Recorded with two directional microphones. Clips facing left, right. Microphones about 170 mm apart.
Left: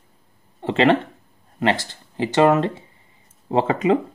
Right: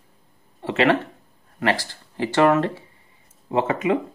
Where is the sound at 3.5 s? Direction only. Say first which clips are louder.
Left 3 dB; 30° left (ahead or behind).